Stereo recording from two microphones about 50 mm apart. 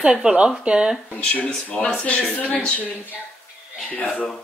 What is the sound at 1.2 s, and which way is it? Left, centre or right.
Speech, left.